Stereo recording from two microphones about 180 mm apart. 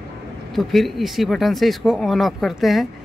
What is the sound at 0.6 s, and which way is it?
Speech, centre (ahead or behind).